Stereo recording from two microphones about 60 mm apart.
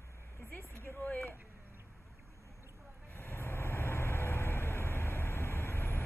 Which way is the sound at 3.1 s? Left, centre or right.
Left.